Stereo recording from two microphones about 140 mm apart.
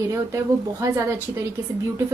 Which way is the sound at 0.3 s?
20° right (ahead or behind).